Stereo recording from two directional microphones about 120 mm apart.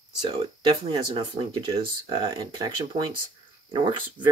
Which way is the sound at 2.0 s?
30° right (ahead or behind).